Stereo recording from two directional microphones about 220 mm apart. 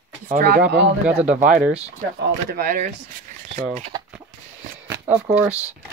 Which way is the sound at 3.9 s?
20° right (ahead or behind).